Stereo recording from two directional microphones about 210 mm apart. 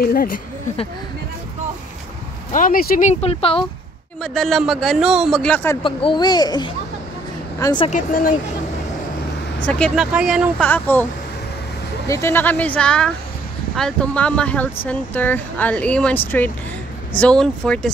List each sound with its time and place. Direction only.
0.0 s speech: 45° left (ahead or behind)
2.5 s speech: 40° left (ahead or behind)
4.2 s a man's voice: centre (ahead or behind)
5.8 s speech: 25° left (ahead or behind)
7.9 s speech: 40° left (ahead or behind)
9.6 s a man's voice: 5° left (ahead or behind)
10.7 s speech: 10° left (ahead or behind)
12.1 s a man's voice: 10° left (ahead or behind)